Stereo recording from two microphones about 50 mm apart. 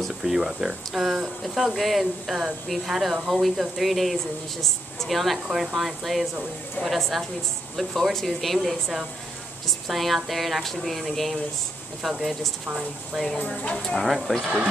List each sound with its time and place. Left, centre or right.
0.1 s a woman's voice: centre
5.5 s a woman's voice: centre
13.6 s a woman's voice: left
14.0 s a woman's voice: centre